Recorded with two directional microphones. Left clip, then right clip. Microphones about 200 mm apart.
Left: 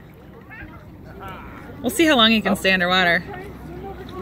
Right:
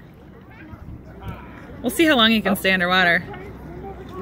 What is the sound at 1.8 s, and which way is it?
A woman's voice, centre (ahead or behind).